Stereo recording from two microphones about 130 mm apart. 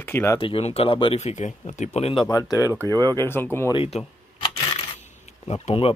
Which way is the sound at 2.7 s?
25° right (ahead or behind).